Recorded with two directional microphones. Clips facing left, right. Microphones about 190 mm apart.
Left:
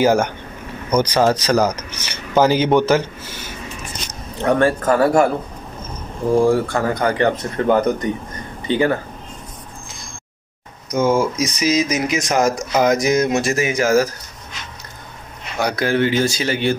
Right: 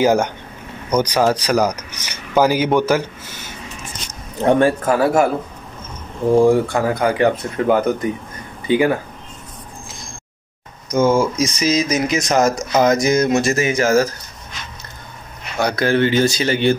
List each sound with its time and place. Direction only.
0.0 s speech: 15° right (ahead or behind)
4.6 s speech: 15° right (ahead or behind)
4.9 s speech: 5° right (ahead or behind)
6.5 s speech: 10° right (ahead or behind)
10.9 s speech: 10° left (ahead or behind)
15.6 s speech: 10° left (ahead or behind)